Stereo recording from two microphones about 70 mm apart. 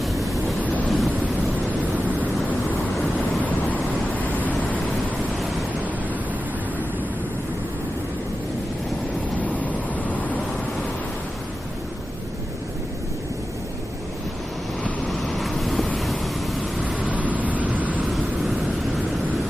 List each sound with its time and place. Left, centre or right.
0.0 s waves: centre
3.4 s waves: left
9.4 s vehicle: left
15.0 s waves: centre
17.0 s vehicle: right